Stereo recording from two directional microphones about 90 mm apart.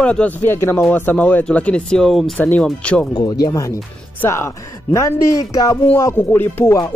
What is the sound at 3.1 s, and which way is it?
Speech, 45° left (ahead or behind).